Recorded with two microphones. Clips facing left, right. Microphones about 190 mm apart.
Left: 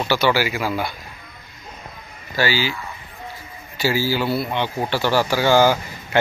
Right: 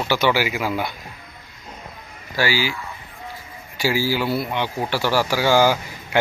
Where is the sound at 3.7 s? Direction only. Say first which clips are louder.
Left 1 dB; 10° right (ahead or behind).